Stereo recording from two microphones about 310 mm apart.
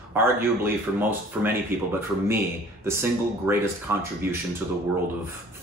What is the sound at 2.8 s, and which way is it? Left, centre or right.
Speech, centre.